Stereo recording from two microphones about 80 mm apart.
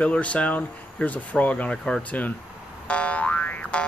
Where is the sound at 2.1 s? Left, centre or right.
Centre.